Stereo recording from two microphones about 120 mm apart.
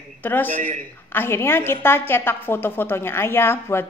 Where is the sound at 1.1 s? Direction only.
20° left (ahead or behind).